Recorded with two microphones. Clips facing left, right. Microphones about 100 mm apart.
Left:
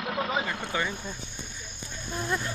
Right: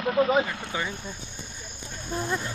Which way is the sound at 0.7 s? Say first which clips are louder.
Left 1 dB; 10° right (ahead or behind).